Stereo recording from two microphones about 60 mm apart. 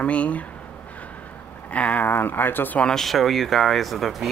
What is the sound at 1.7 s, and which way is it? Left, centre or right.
Speech, left.